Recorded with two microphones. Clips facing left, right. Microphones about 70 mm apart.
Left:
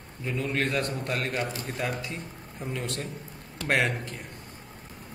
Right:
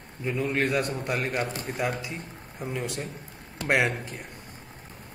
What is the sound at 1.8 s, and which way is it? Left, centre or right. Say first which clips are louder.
A man's voice: right 3 dB; centre.